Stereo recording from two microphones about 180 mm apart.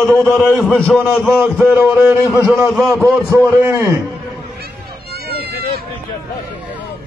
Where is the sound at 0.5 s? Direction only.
5° left (ahead or behind); by 2.7 s 15° right (ahead or behind).